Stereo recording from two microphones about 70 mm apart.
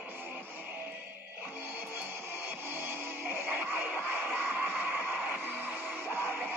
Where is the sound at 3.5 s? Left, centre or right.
Right.